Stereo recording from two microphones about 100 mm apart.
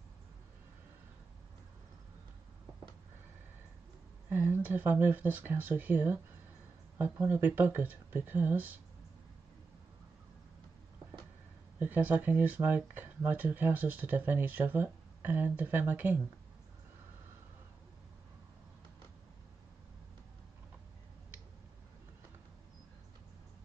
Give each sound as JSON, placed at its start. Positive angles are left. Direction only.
{"t": 4.3, "sound": "speech", "side_deg": -20}
{"t": 11.8, "sound": "speech", "side_deg": -15}